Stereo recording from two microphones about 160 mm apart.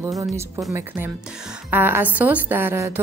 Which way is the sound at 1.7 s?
10° right (ahead or behind).